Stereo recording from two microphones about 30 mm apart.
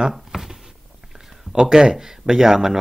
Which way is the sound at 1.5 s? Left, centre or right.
Right.